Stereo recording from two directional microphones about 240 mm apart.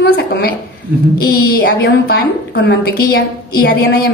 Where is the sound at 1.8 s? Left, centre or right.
Left.